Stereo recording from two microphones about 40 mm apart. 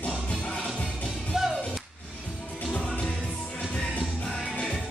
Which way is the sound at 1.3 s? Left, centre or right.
Centre.